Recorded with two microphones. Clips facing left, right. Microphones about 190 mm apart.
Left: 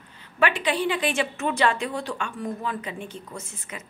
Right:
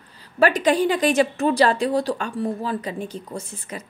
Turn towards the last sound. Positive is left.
turn(degrees=-35)  # may be behind; listen again after turning